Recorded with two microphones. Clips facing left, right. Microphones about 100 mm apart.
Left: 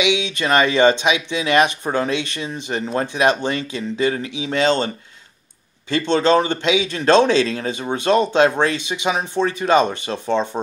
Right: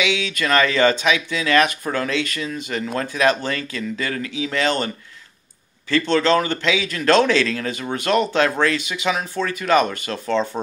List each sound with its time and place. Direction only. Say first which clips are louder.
0.0 s speech: left 2 dB; 20° left (ahead or behind)